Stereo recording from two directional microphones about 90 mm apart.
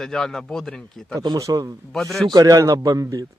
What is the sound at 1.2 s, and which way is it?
Speech, 40° right (ahead or behind).